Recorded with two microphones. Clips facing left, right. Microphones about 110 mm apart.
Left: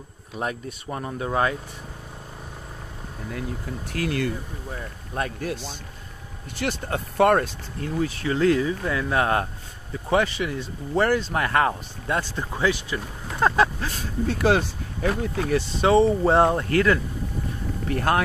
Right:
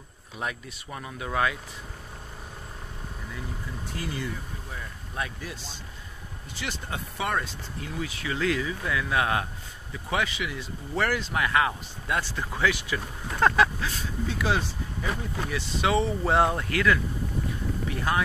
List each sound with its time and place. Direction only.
0.4 s speech: 40° left (ahead or behind)
3.9 s speech: 70° left (ahead or behind)
5.1 s a man's voice: 50° left (ahead or behind)
12.2 s speech: 25° left (ahead or behind)
13.6 s speech: 45° left (ahead or behind); by 15.4 s 65° left (ahead or behind)
15.5 s speech: 35° left (ahead or behind)
16.6 s speech: 35° left (ahead or behind)
17.8 s a man's voice: 55° left (ahead or behind)